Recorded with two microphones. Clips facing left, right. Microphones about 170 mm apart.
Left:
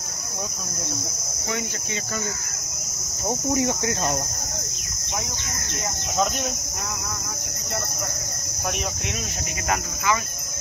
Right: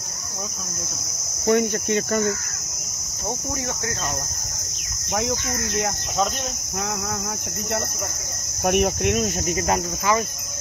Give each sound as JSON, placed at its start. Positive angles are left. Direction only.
{"t": 1.5, "sound": "speech", "side_deg": -55}
{"t": 3.5, "sound": "speech", "side_deg": 20}
{"t": 8.6, "sound": "speech", "side_deg": -55}
{"t": 9.7, "sound": "cricket", "side_deg": -40}